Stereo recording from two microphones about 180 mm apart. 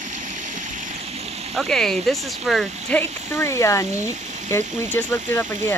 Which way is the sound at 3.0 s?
15° left (ahead or behind).